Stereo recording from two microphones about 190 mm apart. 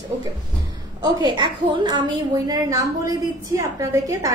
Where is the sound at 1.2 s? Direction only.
25° right (ahead or behind).